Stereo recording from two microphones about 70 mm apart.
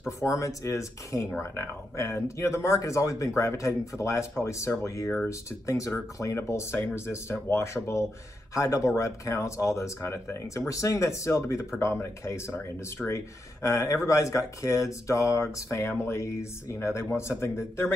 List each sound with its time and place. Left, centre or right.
0.2 s speech: left